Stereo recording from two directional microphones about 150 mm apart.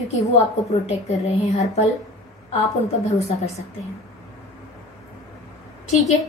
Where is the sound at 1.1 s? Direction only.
50° left (ahead or behind).